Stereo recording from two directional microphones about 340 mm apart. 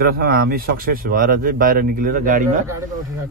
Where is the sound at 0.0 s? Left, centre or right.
Right.